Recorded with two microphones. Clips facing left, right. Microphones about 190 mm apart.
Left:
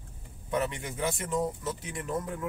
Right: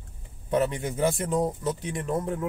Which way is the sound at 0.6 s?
40° right (ahead or behind).